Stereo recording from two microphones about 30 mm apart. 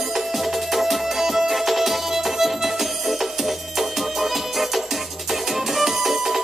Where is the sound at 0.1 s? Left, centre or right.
Centre.